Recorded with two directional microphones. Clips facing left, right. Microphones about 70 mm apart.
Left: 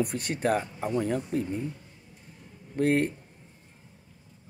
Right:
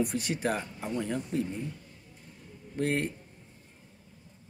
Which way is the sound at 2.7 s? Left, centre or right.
Left.